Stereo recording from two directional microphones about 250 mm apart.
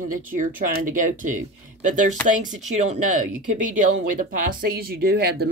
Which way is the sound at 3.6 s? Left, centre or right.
Right.